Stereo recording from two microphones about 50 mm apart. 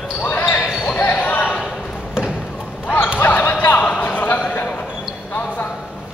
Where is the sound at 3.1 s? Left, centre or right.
Left.